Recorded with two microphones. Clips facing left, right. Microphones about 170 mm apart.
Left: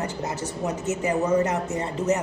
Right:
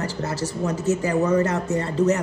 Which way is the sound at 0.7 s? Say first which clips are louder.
Right 3 dB; 20° left (ahead or behind).